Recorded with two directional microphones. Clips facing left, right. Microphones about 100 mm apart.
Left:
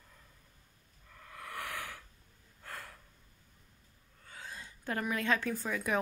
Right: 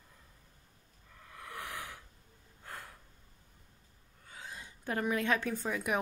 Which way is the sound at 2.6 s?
15° right (ahead or behind).